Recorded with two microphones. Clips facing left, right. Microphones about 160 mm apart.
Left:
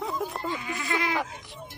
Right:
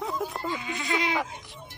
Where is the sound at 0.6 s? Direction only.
20° right (ahead or behind).